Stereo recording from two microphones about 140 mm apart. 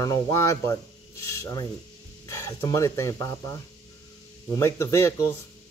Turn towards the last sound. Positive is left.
turn(degrees=20)  # may be behind; listen again after turning